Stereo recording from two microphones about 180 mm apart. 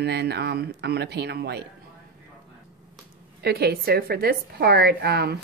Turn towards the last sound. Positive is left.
turn(degrees=-60)  # may be behind; listen again after turning